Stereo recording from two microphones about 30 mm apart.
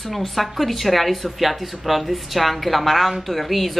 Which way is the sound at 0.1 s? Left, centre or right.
Centre.